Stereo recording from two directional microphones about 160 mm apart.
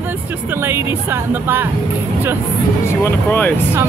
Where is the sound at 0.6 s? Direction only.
15° right (ahead or behind).